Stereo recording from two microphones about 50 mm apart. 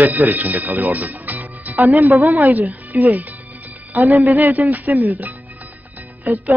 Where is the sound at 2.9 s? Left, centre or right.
Right.